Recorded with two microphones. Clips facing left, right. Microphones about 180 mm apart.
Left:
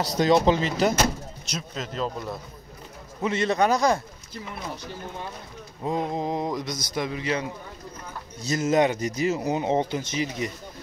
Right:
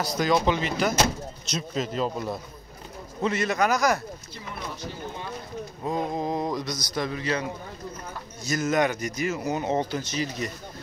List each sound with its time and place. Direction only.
0.2 s speech: 30° left (ahead or behind)
1.8 s a man's voice: 5° right (ahead or behind)
3.2 s speech: 25° left (ahead or behind)
5.9 s speech: 20° left (ahead or behind)
8.5 s speech: 30° left (ahead or behind)